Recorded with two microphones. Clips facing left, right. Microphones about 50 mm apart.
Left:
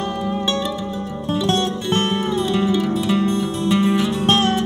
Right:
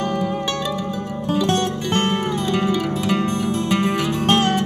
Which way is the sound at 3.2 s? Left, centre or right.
Right.